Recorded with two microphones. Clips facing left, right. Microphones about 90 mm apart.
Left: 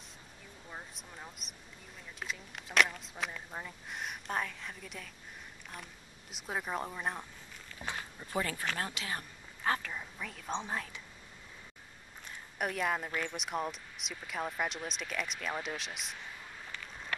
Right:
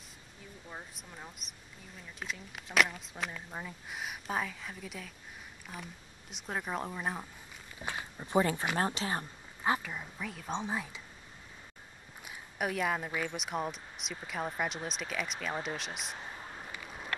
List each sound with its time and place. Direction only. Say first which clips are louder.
0.7 s speech: even; centre (ahead or behind)
6.3 s speech: even; centre (ahead or behind)
7.8 s speech: right 1 dB; 20° right (ahead or behind)
9.6 s speech: right 2 dB; 15° right (ahead or behind)
12.3 s speech: right 2 dB; centre (ahead or behind)
16.2 s a sound: right 3 dB; 35° right (ahead or behind)
16.7 s a sound: right 2 dB; 10° right (ahead or behind)